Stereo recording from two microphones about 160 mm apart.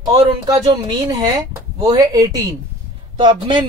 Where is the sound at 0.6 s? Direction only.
30° right (ahead or behind).